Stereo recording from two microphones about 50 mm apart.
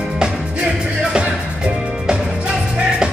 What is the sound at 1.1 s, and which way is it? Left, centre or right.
Music, centre.